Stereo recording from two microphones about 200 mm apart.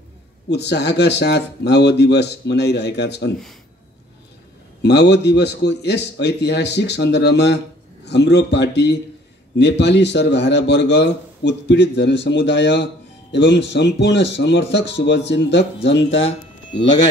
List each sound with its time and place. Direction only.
0.5 s a man's voice: 55° left (ahead or behind)
4.8 s a man's voice: 55° left (ahead or behind)